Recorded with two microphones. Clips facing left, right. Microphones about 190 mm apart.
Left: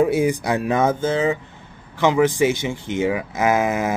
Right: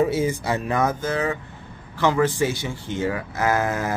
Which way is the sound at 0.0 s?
15° left (ahead or behind).